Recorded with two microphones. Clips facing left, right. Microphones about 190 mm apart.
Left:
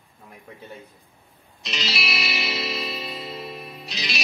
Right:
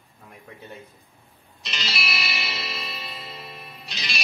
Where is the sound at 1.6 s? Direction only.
Centre (ahead or behind).